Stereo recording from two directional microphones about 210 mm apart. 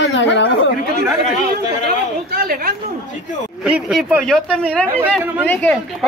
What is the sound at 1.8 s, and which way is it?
Speech, 45° right (ahead or behind).